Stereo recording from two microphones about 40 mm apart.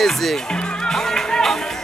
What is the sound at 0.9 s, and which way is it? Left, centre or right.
Music, centre.